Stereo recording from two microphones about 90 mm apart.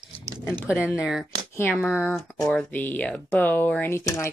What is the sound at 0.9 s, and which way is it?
Speech, 5° right (ahead or behind).